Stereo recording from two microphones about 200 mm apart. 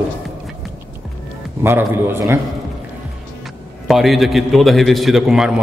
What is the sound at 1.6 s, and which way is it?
Speech, 10° right (ahead or behind).